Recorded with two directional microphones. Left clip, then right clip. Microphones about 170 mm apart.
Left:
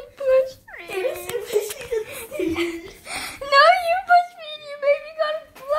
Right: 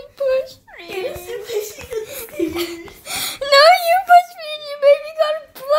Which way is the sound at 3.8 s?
75° right (ahead or behind).